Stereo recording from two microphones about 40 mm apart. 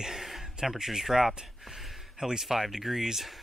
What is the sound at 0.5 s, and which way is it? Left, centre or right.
Speech, centre.